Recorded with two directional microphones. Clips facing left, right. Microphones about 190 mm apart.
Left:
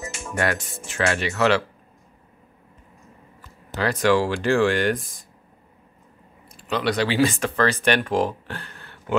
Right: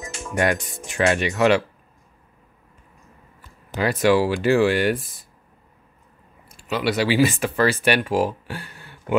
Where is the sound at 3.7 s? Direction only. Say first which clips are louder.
Right 2 dB; 10° right (ahead or behind).